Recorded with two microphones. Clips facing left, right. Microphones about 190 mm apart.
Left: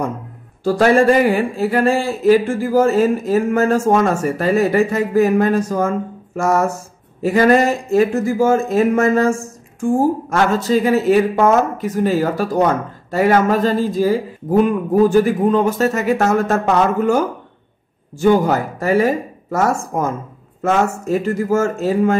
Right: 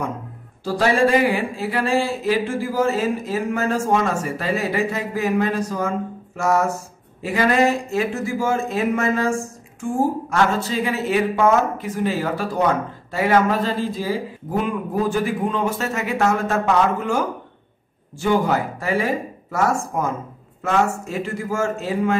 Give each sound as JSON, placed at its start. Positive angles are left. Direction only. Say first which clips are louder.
{"t": 0.7, "sound": "speech", "louder": "left 5 dB", "side_deg": 50}
{"t": 10.3, "sound": "speech", "louder": "left 5 dB", "side_deg": 45}
{"t": 18.2, "sound": "a man's voice", "louder": "left 5 dB", "side_deg": 40}